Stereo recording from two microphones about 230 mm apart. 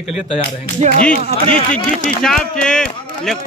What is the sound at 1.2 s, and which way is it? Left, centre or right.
Speech, right.